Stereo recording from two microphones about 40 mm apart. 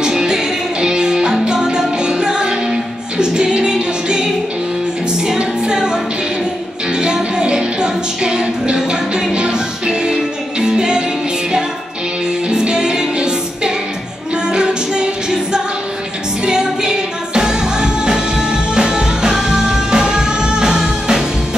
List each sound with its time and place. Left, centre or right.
0.0 s music: centre
5.4 s music: centre
7.0 s music: centre
12.4 s music: right